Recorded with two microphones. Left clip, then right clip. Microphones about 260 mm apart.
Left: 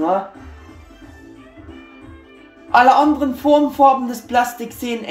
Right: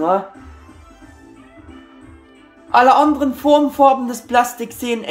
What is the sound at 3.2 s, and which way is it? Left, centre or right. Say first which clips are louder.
Speech: right 1 dB; centre.